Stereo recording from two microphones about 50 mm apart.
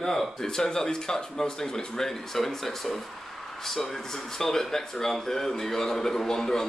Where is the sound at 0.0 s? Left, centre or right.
Centre.